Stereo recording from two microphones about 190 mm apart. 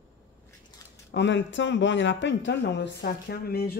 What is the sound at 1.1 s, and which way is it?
Speech, 70° left (ahead or behind).